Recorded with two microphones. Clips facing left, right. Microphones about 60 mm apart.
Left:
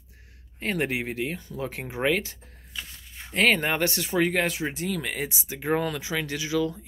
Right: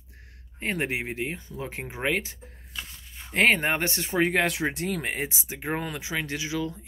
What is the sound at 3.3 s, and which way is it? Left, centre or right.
Speech, right.